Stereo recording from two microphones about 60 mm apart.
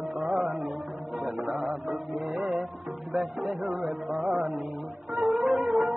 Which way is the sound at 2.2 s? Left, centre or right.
Right.